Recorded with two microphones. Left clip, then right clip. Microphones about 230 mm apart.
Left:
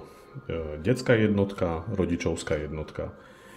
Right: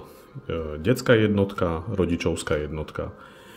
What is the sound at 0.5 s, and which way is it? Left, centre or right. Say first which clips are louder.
Speech: right 3 dB; centre.